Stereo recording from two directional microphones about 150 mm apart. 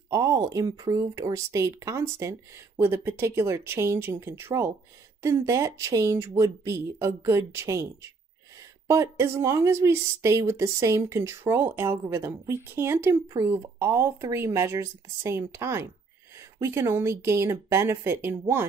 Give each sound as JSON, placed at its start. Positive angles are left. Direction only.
{"t": 0.1, "sound": "speech", "side_deg": -20}